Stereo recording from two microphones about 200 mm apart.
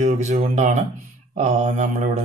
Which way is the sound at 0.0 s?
35° right (ahead or behind).